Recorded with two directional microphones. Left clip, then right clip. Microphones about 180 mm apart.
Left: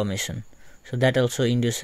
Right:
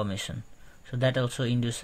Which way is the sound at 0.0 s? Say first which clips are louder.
Left 5 dB; 40° left (ahead or behind).